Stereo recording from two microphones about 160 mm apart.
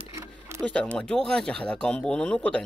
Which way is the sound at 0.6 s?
5° left (ahead or behind).